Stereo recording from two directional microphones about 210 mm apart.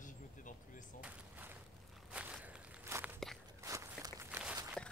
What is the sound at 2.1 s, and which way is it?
Walk, 5° right (ahead or behind).